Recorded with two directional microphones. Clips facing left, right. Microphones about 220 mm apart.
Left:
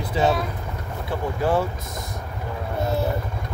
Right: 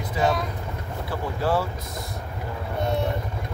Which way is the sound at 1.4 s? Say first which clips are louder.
Left 2 dB; 20° left (ahead or behind).